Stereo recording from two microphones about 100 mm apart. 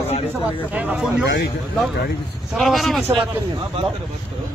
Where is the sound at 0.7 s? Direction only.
15° right (ahead or behind).